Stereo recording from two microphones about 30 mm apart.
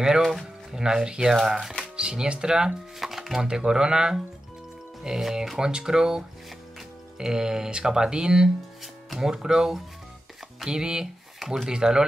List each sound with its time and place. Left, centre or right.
0.7 s speech: right
3.0 s music: centre
3.3 s speech: right
5.6 s speech: right
11.3 s speech: centre
11.7 s speech: right